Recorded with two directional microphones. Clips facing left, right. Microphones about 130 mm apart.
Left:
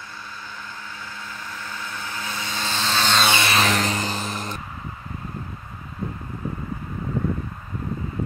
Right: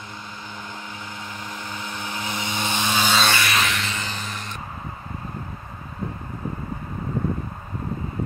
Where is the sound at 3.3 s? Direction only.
30° left (ahead or behind).